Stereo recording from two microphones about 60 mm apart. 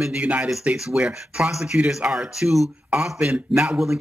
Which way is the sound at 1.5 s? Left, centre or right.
Centre.